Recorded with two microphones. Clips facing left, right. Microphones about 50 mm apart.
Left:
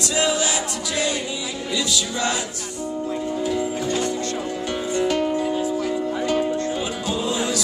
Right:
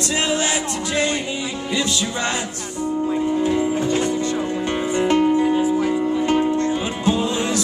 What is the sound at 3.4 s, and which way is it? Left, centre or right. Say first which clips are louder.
Music: right 4 dB; right.